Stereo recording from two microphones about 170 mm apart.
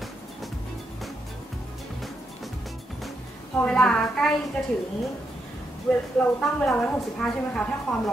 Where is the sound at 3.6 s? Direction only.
5° left (ahead or behind).